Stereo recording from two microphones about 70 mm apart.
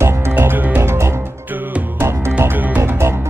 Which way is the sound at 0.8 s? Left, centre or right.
Right.